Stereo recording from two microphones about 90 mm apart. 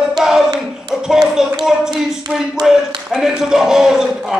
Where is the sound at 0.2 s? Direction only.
5° right (ahead or behind).